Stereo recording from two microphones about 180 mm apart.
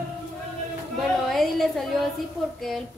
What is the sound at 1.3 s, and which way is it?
Speech, centre (ahead or behind).